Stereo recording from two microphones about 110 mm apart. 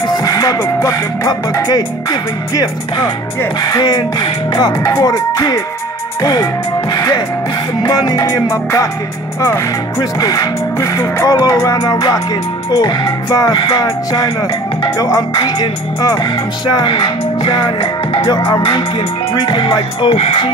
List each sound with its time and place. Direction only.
0.0 s music: 35° left (ahead or behind); by 18.2 s 55° left (ahead or behind)
18.2 s speech: 40° left (ahead or behind)